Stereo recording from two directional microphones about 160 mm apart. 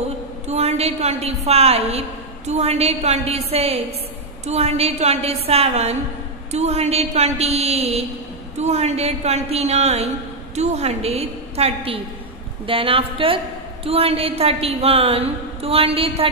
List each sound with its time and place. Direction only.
0.5 s a woman's voice: 40° right (ahead or behind)